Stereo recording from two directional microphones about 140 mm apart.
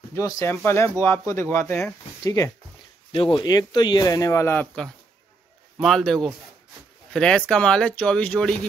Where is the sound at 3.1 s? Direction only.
40° left (ahead or behind); by 4.6 s 20° left (ahead or behind).